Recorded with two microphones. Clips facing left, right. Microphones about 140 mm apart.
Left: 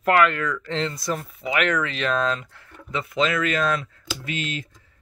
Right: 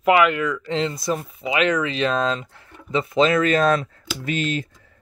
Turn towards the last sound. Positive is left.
turn(degrees=-40)  # may be behind; listen again after turning